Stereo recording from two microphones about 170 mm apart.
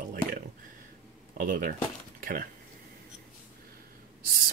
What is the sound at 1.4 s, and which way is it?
Speech, 55° right (ahead or behind).